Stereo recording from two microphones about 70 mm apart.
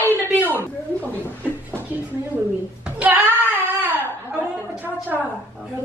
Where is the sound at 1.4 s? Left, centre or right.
Right.